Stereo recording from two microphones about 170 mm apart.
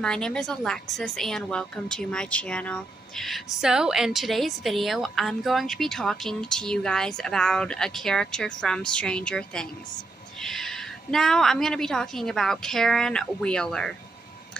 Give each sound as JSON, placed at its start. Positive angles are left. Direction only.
{"t": 0.0, "sound": "a woman's voice", "side_deg": 5}